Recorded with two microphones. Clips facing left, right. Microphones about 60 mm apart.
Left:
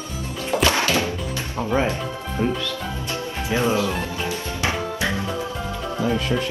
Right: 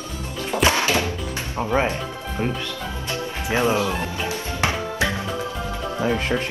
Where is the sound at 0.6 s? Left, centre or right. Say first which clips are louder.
Right 1 dB; right.